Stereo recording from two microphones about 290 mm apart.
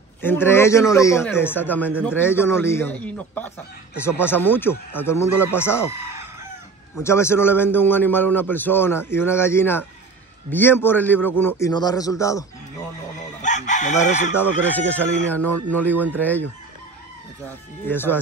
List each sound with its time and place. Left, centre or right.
0.2 s a man's voice: centre
7.0 s a man's voice: centre
13.4 s chicken: left
14.3 s speech: centre
17.5 s a man's voice: centre